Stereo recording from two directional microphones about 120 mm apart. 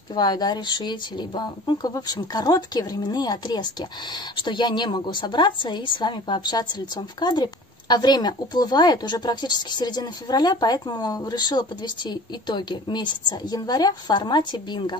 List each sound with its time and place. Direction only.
0.1 s speech: 35° left (ahead or behind)